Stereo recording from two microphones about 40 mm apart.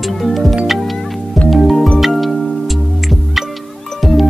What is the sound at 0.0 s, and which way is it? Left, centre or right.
Music, centre.